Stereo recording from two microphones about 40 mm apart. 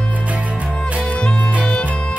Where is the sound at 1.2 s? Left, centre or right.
Left.